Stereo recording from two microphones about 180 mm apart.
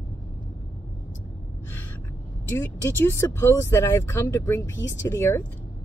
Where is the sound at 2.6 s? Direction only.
15° left (ahead or behind).